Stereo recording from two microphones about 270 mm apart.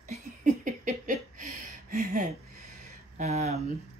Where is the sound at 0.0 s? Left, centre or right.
Right.